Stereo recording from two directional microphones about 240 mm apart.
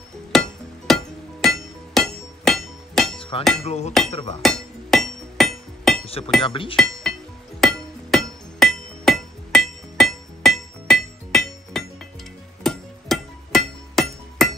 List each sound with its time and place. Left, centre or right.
0.3 s music: centre
3.2 s hammer: left
3.6 s speech: left
4.4 s hammer: centre
6.0 s speech: left
6.8 s chink: centre
7.6 s music: centre